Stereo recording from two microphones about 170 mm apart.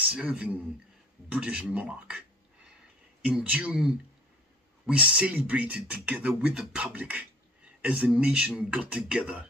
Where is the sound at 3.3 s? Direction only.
5° right (ahead or behind).